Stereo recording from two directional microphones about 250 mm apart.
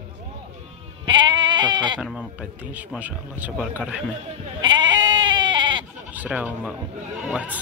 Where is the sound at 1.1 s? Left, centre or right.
Centre.